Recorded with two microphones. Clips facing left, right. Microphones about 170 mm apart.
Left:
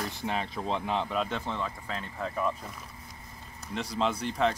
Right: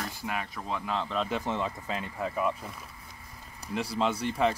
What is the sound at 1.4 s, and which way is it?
Speech, 15° right (ahead or behind).